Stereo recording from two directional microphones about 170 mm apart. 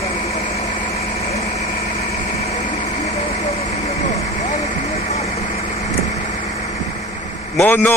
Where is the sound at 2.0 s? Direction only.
40° left (ahead or behind).